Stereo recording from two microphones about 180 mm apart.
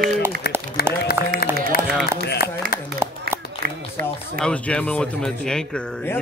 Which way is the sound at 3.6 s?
55° right (ahead or behind).